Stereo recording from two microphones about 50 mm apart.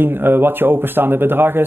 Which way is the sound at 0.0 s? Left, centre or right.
Right.